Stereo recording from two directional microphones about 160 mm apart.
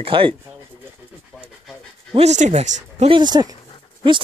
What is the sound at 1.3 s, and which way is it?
Pant, 5° left (ahead or behind).